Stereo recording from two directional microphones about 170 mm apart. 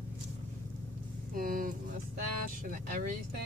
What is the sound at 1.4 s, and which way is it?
Speech, 50° right (ahead or behind).